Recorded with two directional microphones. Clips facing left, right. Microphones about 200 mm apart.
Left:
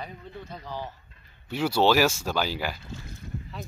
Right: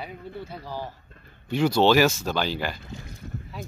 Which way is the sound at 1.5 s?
5° left (ahead or behind).